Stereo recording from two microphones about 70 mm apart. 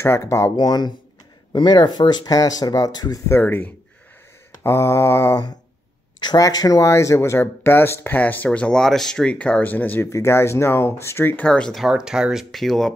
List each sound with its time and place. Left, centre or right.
0.2 s speech: left
0.6 s speech: left
1.5 s speech: left
3.3 s speech: left
4.6 s speech: left
6.1 s a sound: left
6.4 s speech: left
6.9 s speech: left
8.5 s speech: centre
10.0 s speech: left
11.3 s speech: centre
11.7 s speech: centre